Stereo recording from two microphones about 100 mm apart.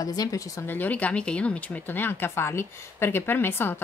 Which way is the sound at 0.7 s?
15° left (ahead or behind).